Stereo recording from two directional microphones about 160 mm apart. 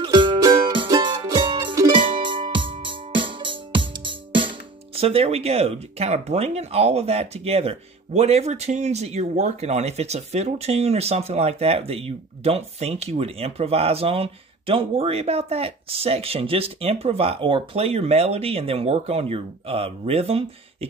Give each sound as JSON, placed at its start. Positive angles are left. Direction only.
{"t": 0.0, "sound": "music", "side_deg": -30}